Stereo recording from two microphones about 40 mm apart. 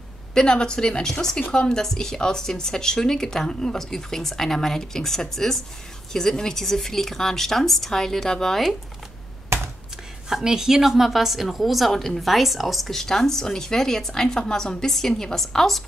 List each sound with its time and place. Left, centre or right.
0.3 s a woman's voice: centre
10.3 s a woman's voice: centre
12.9 s a woman's voice: centre